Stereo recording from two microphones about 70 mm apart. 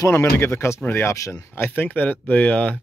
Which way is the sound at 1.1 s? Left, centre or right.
Left.